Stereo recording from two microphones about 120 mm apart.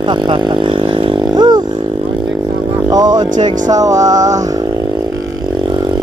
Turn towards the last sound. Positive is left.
turn(degrees=-30)  # may be behind; listen again after turning